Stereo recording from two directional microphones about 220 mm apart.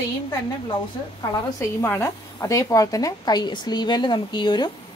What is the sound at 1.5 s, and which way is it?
A woman's voice, 10° left (ahead or behind).